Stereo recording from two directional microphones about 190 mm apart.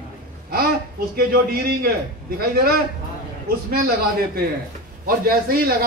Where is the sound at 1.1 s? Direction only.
50° right (ahead or behind).